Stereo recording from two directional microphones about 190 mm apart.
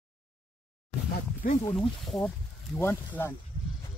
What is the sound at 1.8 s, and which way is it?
Speech, centre (ahead or behind).